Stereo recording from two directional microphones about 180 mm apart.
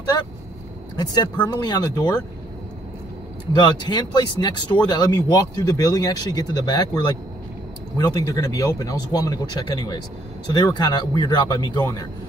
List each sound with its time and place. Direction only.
0.9 s speech: 25° left (ahead or behind)
3.5 s speech: 25° left (ahead or behind)
8.0 s speech: 20° left (ahead or behind)